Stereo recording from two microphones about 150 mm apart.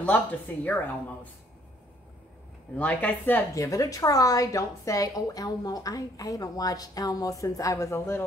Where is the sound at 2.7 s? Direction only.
10° left (ahead or behind).